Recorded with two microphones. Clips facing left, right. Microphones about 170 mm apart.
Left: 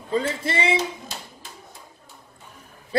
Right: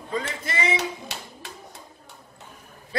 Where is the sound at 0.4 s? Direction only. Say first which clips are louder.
Left 3 dB; 30° left (ahead or behind).